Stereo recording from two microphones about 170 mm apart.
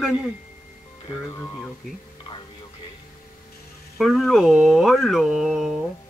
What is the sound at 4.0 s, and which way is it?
Speech, centre (ahead or behind).